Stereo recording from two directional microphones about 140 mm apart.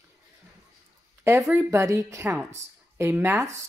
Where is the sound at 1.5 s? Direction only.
15° right (ahead or behind).